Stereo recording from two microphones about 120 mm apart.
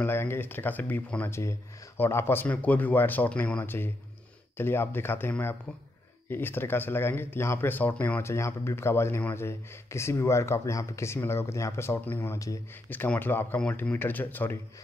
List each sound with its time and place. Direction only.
0.0 s speech: 20° left (ahead or behind)